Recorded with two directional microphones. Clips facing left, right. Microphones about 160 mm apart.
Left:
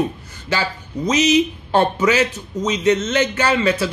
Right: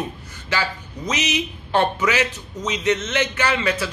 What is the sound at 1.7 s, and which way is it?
A man's voice, 35° left (ahead or behind).